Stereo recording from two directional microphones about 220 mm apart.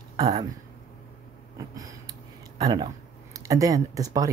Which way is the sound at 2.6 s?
15° right (ahead or behind).